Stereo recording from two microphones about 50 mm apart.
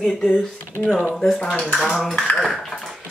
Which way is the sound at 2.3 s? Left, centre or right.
Centre.